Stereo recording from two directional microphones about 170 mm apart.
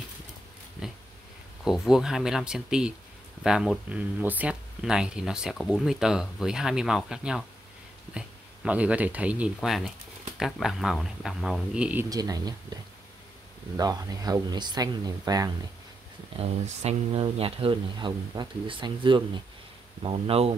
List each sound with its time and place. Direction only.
1.6 s speech: centre (ahead or behind)
12.1 s speech: 20° right (ahead or behind)
13.7 s speech: 20° right (ahead or behind)
16.3 s speech: 35° right (ahead or behind)